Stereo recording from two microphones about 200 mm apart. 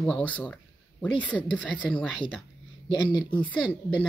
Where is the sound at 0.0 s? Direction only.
5° left (ahead or behind).